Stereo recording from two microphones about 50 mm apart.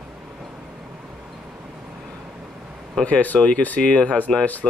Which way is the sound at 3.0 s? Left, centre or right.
Left.